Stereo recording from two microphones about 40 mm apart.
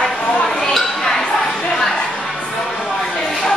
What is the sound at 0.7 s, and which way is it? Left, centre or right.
Chink, centre.